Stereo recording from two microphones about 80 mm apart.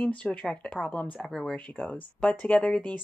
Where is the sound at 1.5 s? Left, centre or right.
Centre.